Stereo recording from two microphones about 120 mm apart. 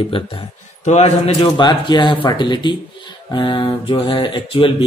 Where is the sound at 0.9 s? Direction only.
60° left (ahead or behind).